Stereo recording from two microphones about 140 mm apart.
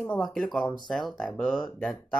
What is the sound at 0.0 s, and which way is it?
Speech, 5° left (ahead or behind).